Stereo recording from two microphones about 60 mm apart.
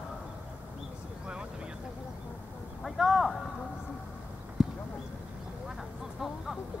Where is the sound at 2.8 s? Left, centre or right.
Centre.